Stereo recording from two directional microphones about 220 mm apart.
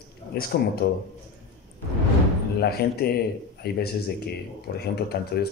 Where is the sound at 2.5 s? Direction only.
45° left (ahead or behind).